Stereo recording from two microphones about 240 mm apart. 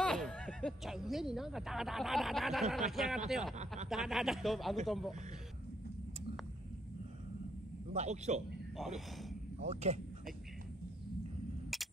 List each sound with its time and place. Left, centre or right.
0.0 s speech: centre
7.9 s a man's voice: right
8.7 s speech: centre
9.6 s a man's voice: right